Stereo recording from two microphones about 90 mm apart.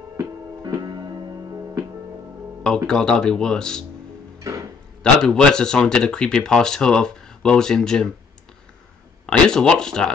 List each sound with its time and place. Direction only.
0.2 s music: 40° right (ahead or behind)
2.9 s speech: 5° left (ahead or behind)
4.4 s tick-tock: 40° right (ahead or behind)
5.0 s speech: 10° left (ahead or behind)
9.2 s speech: 10° left (ahead or behind)